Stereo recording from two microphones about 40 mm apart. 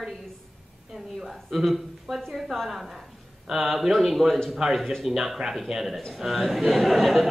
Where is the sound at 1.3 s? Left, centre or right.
Centre.